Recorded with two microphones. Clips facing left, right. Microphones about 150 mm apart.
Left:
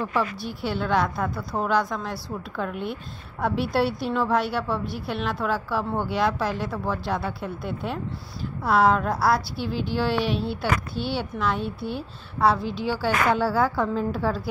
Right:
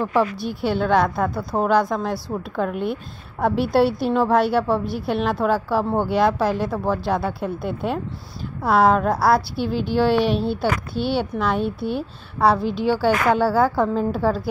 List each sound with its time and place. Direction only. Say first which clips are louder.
0.0 s a woman's voice: right 6 dB; 50° right (ahead or behind)
13.4 s a woman's voice: right 4 dB; 45° right (ahead or behind)